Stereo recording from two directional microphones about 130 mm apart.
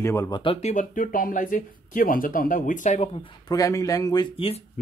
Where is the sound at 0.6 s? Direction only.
70° left (ahead or behind).